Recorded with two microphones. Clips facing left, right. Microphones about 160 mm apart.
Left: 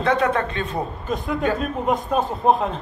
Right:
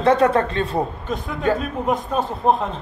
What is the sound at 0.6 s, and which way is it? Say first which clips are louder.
Speech: right 4 dB; 35° right (ahead or behind).